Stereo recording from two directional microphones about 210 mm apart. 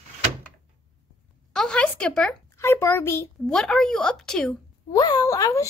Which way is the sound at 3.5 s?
Centre (ahead or behind).